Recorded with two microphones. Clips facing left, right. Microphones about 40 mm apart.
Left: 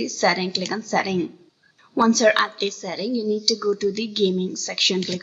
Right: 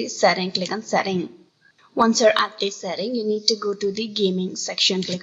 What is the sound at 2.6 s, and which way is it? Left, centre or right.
Speech, right.